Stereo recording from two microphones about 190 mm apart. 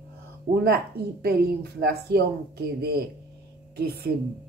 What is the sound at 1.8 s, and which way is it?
Speech, 55° right (ahead or behind).